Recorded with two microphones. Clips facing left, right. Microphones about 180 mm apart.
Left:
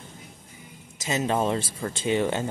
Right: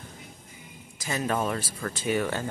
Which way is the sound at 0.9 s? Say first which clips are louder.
Left 3 dB; 20° left (ahead or behind).